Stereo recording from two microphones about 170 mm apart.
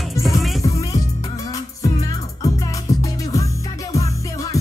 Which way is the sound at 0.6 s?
20° left (ahead or behind).